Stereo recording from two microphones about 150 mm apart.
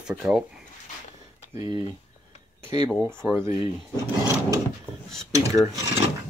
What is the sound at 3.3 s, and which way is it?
Speech, 15° right (ahead or behind).